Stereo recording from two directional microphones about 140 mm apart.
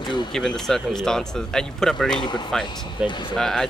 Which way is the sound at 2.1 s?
30° left (ahead or behind).